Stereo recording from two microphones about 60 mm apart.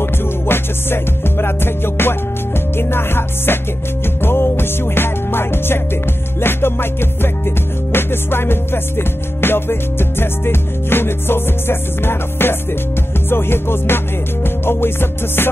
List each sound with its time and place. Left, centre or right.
0.0 s music: left